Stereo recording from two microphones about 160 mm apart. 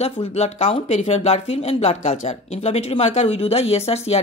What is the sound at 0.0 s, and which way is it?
Speech, 40° left (ahead or behind).